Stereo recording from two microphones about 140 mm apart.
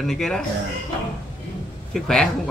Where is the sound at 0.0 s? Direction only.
5° left (ahead or behind).